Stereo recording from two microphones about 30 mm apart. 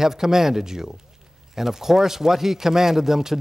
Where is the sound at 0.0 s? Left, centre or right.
Centre.